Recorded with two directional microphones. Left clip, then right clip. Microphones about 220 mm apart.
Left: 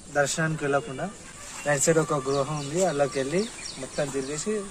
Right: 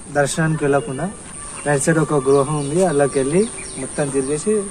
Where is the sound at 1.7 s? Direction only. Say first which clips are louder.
Right 5 dB; 20° left (ahead or behind).